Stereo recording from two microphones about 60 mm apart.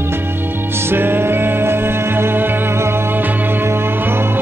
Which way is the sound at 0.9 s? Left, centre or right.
Right.